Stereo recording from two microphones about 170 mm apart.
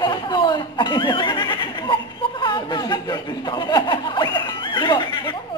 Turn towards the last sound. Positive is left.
turn(degrees=25)  # may be behind; listen again after turning